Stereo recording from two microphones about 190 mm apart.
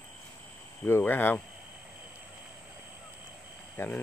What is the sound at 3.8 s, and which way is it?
Speech, 10° left (ahead or behind).